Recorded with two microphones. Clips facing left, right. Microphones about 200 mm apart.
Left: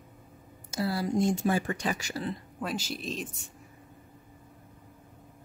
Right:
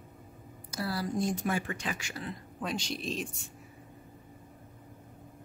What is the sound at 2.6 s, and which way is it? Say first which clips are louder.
Speech: even; 5° left (ahead or behind).